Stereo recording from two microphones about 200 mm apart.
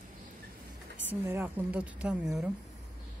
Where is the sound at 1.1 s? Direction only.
10° right (ahead or behind).